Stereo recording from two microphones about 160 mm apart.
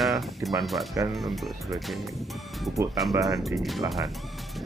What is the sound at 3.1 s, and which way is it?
Speech, 20° right (ahead or behind).